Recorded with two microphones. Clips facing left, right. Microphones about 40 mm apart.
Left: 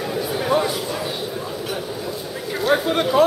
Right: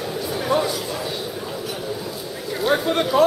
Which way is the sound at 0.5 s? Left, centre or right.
Centre.